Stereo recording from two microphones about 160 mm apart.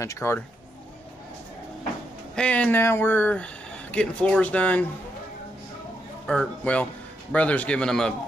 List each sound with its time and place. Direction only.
0.0 s speech: 15° left (ahead or behind)
2.3 s speech: 5° left (ahead or behind)
6.2 s speech: 5° left (ahead or behind)